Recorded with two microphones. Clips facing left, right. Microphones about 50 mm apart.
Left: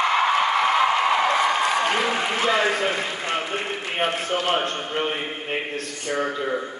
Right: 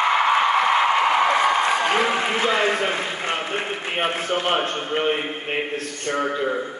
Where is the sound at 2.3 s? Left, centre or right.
Right.